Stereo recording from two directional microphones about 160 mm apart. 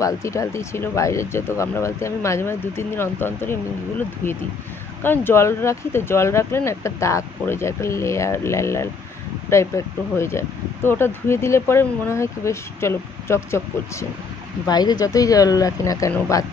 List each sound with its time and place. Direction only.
0.0 s speech: 20° left (ahead or behind)
5.0 s speech: 15° left (ahead or behind)